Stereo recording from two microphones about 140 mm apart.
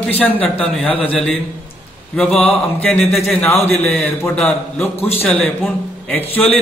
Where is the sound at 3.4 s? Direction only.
20° left (ahead or behind).